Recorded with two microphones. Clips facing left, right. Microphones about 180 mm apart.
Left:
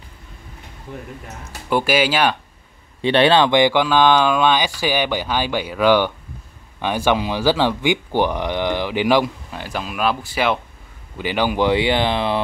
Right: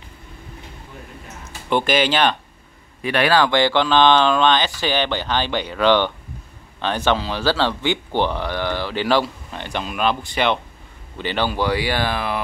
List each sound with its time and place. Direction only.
1.7 s speech: 5° left (ahead or behind)
3.0 s speech: 30° left (ahead or behind)